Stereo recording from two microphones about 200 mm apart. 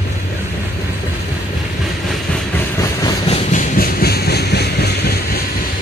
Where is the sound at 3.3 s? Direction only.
40° left (ahead or behind); by 5.1 s 55° left (ahead or behind).